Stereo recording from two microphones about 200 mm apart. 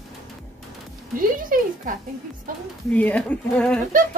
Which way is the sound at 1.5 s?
45° right (ahead or behind).